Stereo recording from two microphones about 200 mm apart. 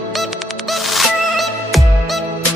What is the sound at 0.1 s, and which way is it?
Music, centre (ahead or behind).